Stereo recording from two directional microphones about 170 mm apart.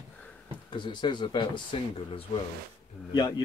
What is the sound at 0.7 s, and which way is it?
Speech, 25° left (ahead or behind).